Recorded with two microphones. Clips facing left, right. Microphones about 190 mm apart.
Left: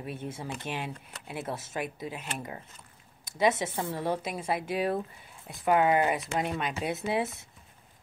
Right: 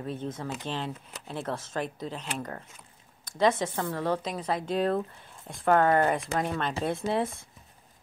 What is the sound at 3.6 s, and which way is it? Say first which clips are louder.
Speech: right 2 dB; 10° left (ahead or behind).